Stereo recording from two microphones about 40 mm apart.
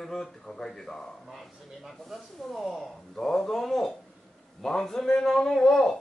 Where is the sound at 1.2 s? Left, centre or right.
Centre.